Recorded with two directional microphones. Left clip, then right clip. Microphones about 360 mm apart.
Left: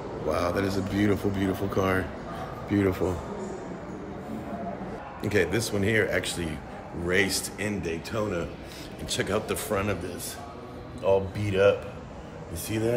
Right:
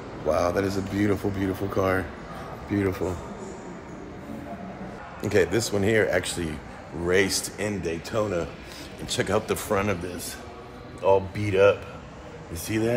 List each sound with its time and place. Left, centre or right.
0.3 s a man's voice: centre
5.3 s a man's voice: centre
11.0 s speech: centre